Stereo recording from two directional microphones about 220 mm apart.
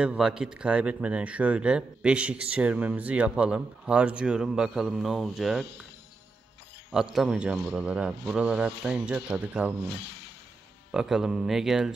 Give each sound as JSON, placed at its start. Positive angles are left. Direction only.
{"t": 0.0, "sound": "speech", "side_deg": -5}
{"t": 6.9, "sound": "speech", "side_deg": 0}
{"t": 9.8, "sound": "speech", "side_deg": 50}
{"t": 10.9, "sound": "speech", "side_deg": 0}